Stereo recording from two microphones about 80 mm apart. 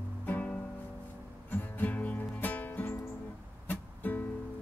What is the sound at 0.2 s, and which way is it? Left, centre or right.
Music, left.